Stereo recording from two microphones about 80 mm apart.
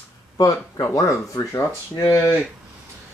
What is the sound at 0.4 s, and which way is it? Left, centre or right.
Speech, left.